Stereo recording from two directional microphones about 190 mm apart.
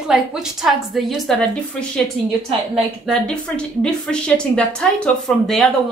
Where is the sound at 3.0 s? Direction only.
5° left (ahead or behind).